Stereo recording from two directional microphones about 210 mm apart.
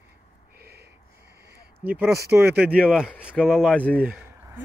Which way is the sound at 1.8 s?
10° right (ahead or behind).